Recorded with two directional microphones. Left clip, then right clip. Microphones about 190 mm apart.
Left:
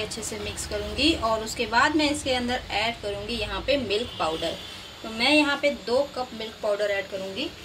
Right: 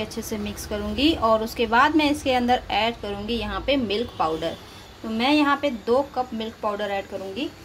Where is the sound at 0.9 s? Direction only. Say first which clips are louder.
Right 4 dB; 55° right (ahead or behind).